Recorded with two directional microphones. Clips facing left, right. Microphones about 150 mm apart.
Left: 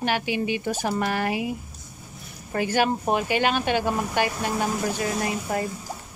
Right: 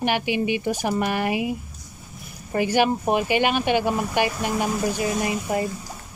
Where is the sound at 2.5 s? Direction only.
15° right (ahead or behind).